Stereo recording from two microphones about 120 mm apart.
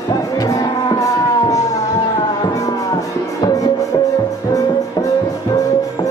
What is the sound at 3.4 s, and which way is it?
Music, 30° left (ahead or behind).